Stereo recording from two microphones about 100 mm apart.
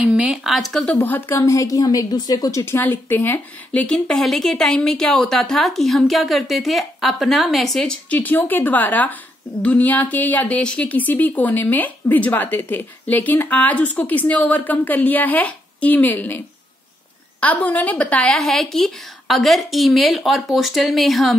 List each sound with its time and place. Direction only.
0.0 s a woman's voice: 10° right (ahead or behind)
1.0 s a woman's voice: 20° left (ahead or behind); by 2.6 s 40° left (ahead or behind)
2.6 s speech: 20° left (ahead or behind)
18.3 s a woman's voice: centre (ahead or behind)